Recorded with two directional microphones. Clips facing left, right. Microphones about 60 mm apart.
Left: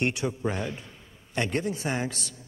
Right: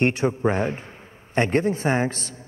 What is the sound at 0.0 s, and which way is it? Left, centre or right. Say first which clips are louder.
A man's voice: right 7 dB; right.